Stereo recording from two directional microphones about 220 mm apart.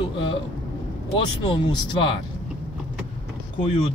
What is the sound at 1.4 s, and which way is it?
Speech, 25° left (ahead or behind).